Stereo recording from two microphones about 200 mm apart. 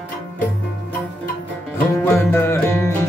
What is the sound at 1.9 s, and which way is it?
Music, 10° left (ahead or behind).